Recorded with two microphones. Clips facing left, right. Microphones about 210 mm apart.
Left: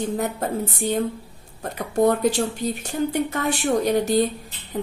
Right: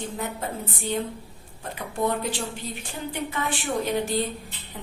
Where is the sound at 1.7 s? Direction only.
45° left (ahead or behind).